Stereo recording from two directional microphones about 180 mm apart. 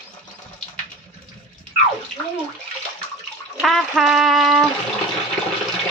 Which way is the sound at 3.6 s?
Centre (ahead or behind).